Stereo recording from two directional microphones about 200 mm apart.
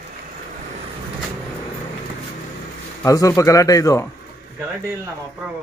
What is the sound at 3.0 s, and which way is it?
Speech, 15° left (ahead or behind).